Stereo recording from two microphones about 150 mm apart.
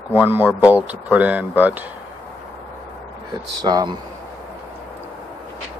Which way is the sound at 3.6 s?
25° right (ahead or behind).